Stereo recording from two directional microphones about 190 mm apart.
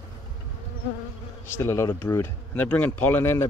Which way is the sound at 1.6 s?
15° left (ahead or behind).